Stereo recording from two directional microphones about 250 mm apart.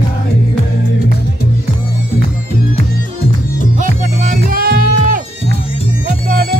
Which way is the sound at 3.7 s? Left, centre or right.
Right.